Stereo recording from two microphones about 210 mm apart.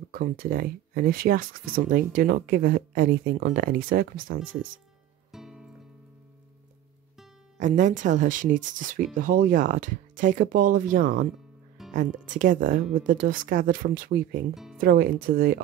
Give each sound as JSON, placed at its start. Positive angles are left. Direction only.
{"t": 0.1, "sound": "speech", "side_deg": -45}
{"t": 5.3, "sound": "music", "side_deg": 0}
{"t": 7.5, "sound": "speech", "side_deg": -35}
{"t": 14.5, "sound": "speech", "side_deg": 0}
{"t": 14.8, "sound": "speech", "side_deg": -45}